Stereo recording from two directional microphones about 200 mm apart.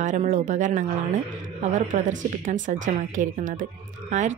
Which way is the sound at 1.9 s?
40° right (ahead or behind).